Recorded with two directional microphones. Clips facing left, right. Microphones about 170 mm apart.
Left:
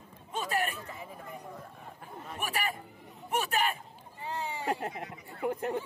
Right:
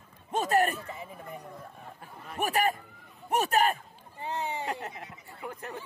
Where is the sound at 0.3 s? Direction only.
45° right (ahead or behind).